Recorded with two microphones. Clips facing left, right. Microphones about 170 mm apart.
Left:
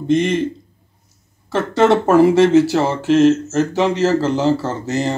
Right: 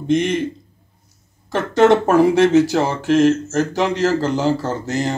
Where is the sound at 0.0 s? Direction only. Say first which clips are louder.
Left 2 dB; 10° right (ahead or behind).